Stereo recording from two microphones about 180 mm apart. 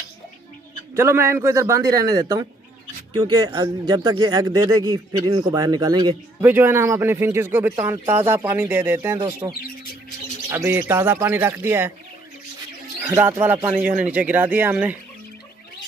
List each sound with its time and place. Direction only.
0.9 s speech: 15° right (ahead or behind)
10.5 s speech: 15° right (ahead or behind)
13.1 s speech: 15° right (ahead or behind)